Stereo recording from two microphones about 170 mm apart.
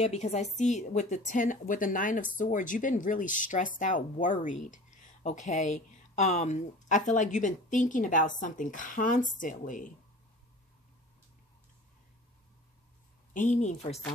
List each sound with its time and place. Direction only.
0.0 s speech: 40° left (ahead or behind)
13.3 s speech: 45° left (ahead or behind)